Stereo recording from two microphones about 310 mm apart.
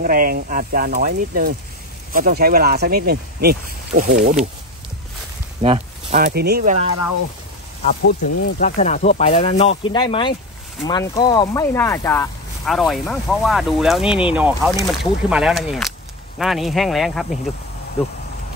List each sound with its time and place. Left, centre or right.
0.0 s speech: right
5.6 s speech: right
8.2 s speech: left; by 17.4 s centre